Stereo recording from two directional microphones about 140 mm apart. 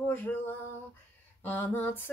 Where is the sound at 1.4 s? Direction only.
15° left (ahead or behind).